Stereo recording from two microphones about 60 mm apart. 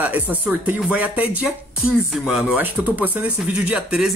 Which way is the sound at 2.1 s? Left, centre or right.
Centre.